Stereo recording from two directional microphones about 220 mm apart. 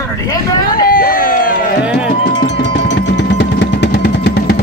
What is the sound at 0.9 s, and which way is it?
Crowd, 40° left (ahead or behind).